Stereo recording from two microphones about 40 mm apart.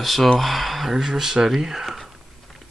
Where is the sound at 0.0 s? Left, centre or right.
Centre.